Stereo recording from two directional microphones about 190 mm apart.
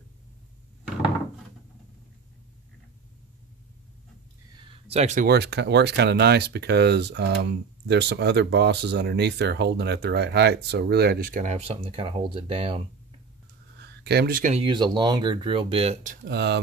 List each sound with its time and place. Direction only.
4.8 s speech: 35° right (ahead or behind)
5.3 s speech: 60° right (ahead or behind); by 12.8 s 30° right (ahead or behind)
14.0 s speech: 55° right (ahead or behind)
14.6 s speech: 25° right (ahead or behind); by 16.2 s 40° right (ahead or behind)
16.3 s speech: 60° right (ahead or behind)